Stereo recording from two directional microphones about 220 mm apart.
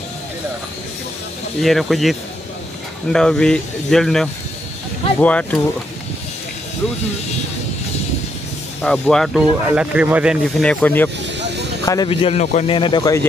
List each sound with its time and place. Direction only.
1.6 s speech: centre (ahead or behind)
8.8 s speech: 5° left (ahead or behind)
11.3 s a sound: 50° right (ahead or behind)
11.8 s speech: 15° left (ahead or behind)